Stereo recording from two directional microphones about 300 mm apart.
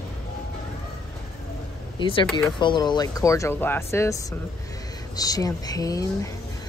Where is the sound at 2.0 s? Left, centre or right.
Centre.